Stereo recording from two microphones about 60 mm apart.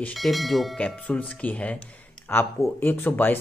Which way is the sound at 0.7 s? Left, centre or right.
Centre.